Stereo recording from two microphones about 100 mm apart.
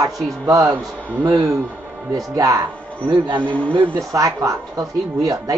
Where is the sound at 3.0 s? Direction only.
55° right (ahead or behind).